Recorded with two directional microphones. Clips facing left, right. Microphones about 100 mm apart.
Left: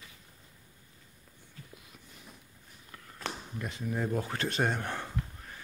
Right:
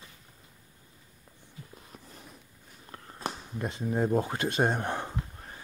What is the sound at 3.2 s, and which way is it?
Speech, 25° right (ahead or behind).